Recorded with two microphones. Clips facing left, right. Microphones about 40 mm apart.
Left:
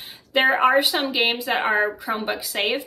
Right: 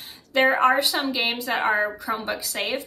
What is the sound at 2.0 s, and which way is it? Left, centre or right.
Speech, left.